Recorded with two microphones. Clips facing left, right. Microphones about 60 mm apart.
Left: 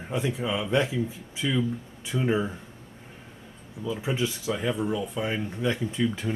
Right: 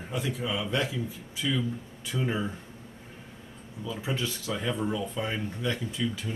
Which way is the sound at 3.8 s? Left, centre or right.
Centre.